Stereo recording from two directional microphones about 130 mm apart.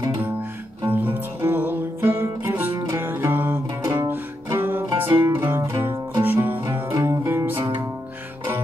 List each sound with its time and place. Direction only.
0.9 s music: 15° right (ahead or behind)
2.7 s music: 35° right (ahead or behind)
3.0 s music: 15° right (ahead or behind)
6.6 s music: 35° right (ahead or behind)
7.0 s music: 20° right (ahead or behind)